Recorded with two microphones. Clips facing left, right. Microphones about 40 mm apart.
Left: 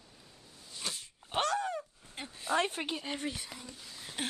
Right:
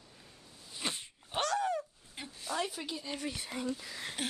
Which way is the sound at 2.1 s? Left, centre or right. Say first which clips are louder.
Left 6 dB; left.